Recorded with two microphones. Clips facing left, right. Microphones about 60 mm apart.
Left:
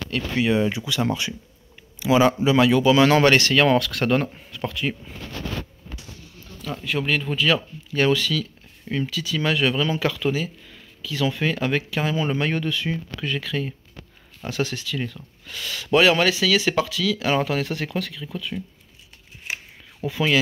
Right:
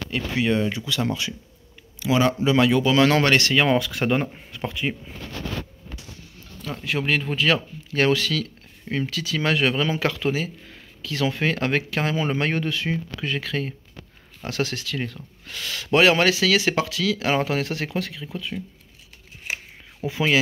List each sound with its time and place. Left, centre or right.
0.4 s speech: centre
3.5 s speech: centre
6.8 s speech: right
8.8 s speech: right
9.1 s speech: right
15.6 s speech: right
18.3 s speech: centre
20.0 s speech: centre